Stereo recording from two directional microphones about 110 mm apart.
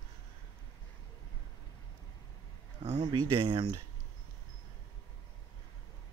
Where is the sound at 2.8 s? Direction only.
65° right (ahead or behind).